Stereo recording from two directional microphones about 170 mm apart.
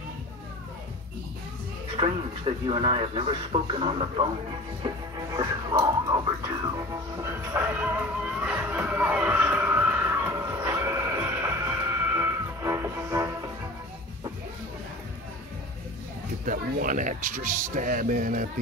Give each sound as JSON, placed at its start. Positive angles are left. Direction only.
{"t": 2.0, "sound": "speech", "side_deg": -30}
{"t": 4.8, "sound": "speech", "side_deg": -25}
{"t": 6.9, "sound": "music", "side_deg": -15}
{"t": 16.4, "sound": "speech", "side_deg": -50}